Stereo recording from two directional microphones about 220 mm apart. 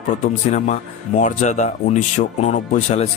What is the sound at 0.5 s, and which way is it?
Speech, 35° left (ahead or behind).